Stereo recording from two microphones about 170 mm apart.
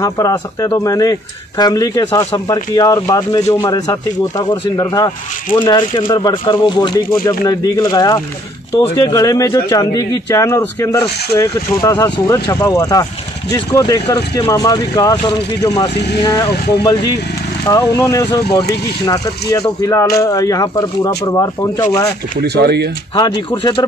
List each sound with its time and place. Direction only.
0.0 s speech: 20° left (ahead or behind)
19.8 s speech: 20° left (ahead or behind)
22.4 s speech: 70° right (ahead or behind)
23.1 s speech: 25° left (ahead or behind)